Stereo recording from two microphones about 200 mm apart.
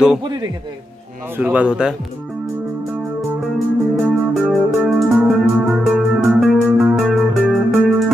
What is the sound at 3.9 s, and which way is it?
Music, 5° right (ahead or behind).